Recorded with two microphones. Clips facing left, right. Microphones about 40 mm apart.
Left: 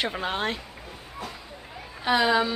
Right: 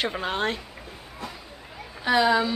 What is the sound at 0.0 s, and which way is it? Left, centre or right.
Speech, centre.